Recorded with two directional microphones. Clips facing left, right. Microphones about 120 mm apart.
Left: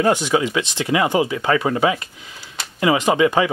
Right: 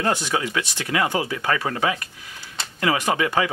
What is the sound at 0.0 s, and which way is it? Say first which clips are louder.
Speech: left 6 dB; 15° left (ahead or behind).